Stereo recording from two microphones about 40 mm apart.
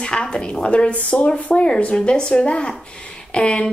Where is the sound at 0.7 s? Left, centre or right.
Left.